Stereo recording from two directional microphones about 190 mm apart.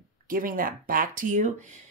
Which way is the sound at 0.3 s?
45° right (ahead or behind).